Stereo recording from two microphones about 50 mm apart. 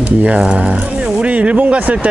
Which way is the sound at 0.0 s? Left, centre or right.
Right.